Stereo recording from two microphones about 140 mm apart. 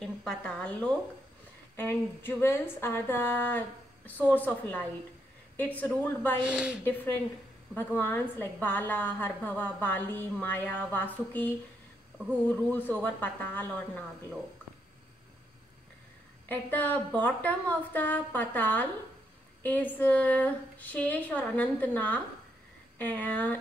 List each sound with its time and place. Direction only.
0.0 s a woman's voice: 5° left (ahead or behind)
6.4 s speech: 5° right (ahead or behind)
7.7 s a woman's voice: 15° left (ahead or behind)
16.4 s a woman's voice: 10° left (ahead or behind)